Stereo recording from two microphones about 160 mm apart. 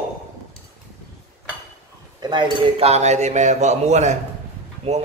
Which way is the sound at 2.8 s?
45° right (ahead or behind).